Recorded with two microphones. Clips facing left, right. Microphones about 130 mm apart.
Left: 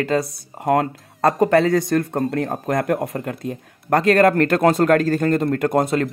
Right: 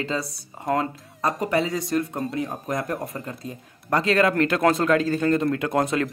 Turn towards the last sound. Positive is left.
turn(degrees=35)  # may be behind; listen again after turning